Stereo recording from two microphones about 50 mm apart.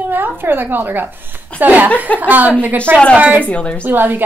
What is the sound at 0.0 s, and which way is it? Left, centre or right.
A woman's voice, right.